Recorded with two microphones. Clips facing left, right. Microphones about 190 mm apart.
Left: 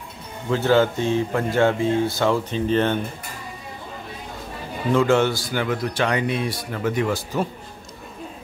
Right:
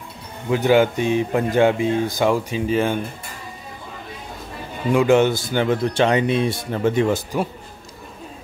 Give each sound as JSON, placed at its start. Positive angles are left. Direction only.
{"t": 0.5, "sound": "speech", "side_deg": -15}
{"t": 4.9, "sound": "speech", "side_deg": -15}